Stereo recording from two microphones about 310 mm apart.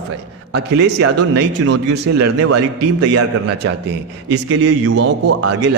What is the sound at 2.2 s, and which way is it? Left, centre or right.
A man's voice, right.